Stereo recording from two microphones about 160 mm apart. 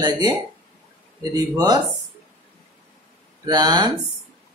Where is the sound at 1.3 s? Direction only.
25° right (ahead or behind).